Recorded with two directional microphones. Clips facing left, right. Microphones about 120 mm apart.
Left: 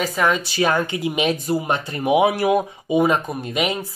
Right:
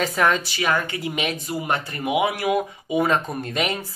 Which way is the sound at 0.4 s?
30° left (ahead or behind).